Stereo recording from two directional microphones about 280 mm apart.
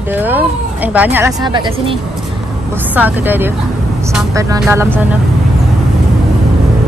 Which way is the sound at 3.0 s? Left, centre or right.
Centre.